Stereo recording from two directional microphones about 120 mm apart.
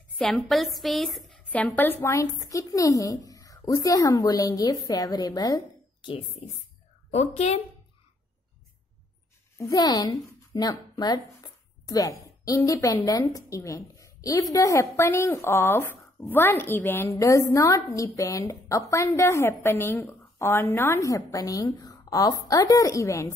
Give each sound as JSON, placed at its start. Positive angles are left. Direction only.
{"t": 0.2, "sound": "speech", "side_deg": 0}
{"t": 7.1, "sound": "a woman's voice", "side_deg": 60}
{"t": 9.6, "sound": "speech", "side_deg": 30}